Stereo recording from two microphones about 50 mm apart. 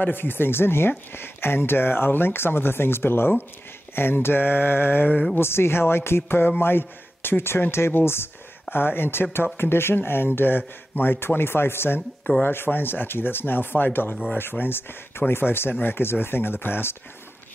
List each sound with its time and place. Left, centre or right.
0.0 s speech: left